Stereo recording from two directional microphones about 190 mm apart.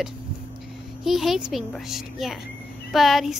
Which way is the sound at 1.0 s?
Centre (ahead or behind).